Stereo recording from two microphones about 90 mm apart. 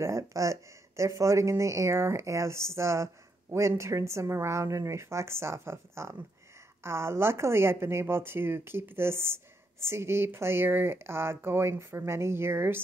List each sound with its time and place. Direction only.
0.0 s speech: 35° right (ahead or behind)